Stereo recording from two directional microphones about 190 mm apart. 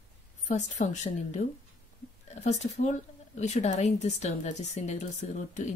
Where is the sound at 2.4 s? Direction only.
35° left (ahead or behind).